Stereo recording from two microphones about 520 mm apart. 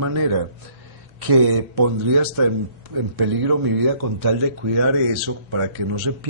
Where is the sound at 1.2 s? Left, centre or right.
Right.